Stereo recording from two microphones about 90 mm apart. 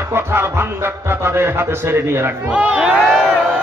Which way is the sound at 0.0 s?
25° right (ahead or behind).